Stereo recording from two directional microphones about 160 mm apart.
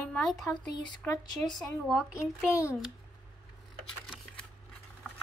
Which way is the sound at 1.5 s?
5° right (ahead or behind).